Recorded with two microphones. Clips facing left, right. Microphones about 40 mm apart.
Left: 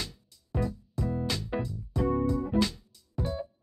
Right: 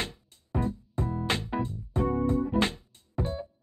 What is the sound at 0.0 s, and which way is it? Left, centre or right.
Music, right.